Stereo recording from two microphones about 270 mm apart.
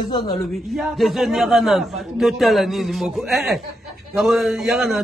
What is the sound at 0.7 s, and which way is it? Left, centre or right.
A man's voice, centre.